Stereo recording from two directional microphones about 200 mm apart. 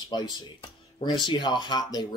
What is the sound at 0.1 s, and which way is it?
Speech, 20° left (ahead or behind).